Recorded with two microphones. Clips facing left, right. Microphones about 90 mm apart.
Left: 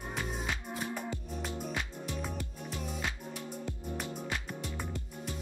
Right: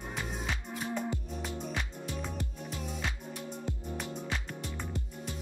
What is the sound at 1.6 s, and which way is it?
Music, 5° left (ahead or behind).